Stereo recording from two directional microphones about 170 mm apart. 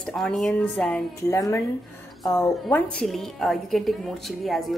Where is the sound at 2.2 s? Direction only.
20° left (ahead or behind).